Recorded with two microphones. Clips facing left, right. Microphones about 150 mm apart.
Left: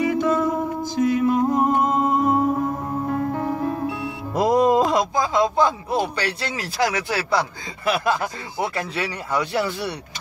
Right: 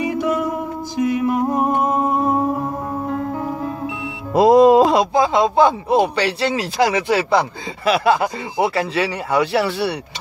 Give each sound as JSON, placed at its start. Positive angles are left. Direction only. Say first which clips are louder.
{"t": 0.0, "sound": "music", "louder": "even", "side_deg": -15}
{"t": 4.3, "sound": "speech", "louder": "right 7 dB", "side_deg": -80}